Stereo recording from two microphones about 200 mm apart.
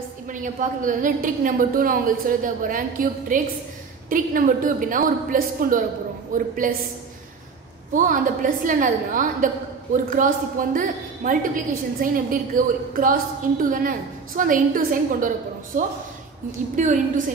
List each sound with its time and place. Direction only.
0.3 s a woman's voice: 40° right (ahead or behind)
7.9 s a woman's voice: 40° right (ahead or behind)